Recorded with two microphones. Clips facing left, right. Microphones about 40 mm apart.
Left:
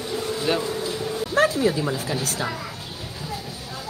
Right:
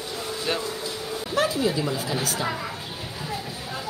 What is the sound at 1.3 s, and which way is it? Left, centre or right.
Speech, left.